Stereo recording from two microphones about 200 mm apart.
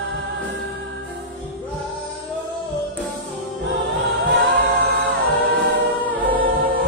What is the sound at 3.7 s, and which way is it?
Choir, 60° right (ahead or behind).